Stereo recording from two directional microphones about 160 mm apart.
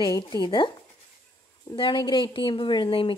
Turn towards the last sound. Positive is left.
turn(degrees=35)  # may be behind; listen again after turning